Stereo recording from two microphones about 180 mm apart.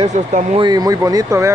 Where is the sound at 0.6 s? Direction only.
20° right (ahead or behind).